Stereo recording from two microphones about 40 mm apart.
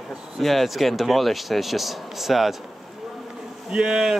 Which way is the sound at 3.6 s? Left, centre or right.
Right.